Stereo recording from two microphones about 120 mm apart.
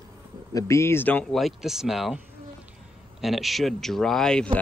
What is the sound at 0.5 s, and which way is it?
Speech, 25° left (ahead or behind).